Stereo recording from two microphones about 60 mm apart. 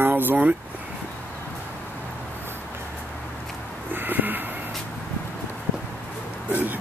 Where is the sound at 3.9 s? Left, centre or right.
Right.